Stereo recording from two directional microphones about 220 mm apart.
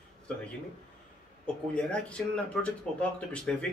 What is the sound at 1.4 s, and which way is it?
Speech, 5° left (ahead or behind).